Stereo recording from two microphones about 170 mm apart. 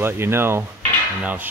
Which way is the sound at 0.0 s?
15° right (ahead or behind).